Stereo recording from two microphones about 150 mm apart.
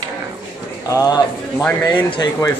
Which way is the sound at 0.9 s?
25° left (ahead or behind).